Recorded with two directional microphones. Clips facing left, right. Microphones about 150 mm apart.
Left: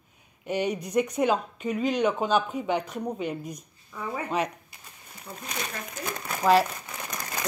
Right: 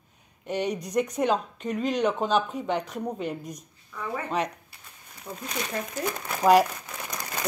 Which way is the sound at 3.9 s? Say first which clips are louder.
Even; 20° left (ahead or behind).